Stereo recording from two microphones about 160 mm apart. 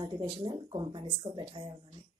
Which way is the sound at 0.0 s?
30° right (ahead or behind).